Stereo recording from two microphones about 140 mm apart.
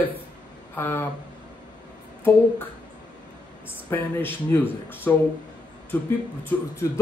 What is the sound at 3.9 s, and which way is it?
Speech, 15° left (ahead or behind).